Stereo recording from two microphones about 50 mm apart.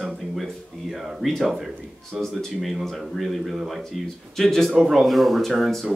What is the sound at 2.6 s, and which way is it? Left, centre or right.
Speech, centre.